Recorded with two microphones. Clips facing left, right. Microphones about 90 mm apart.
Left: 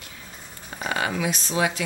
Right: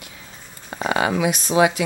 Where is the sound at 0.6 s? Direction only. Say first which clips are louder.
Right 6 dB; 30° right (ahead or behind).